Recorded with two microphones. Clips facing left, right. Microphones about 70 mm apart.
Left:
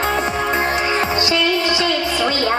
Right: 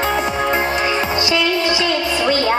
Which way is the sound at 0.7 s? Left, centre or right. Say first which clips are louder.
Even; left.